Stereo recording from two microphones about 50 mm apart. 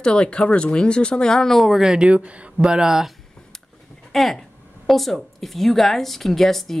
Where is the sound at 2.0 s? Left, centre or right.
Right.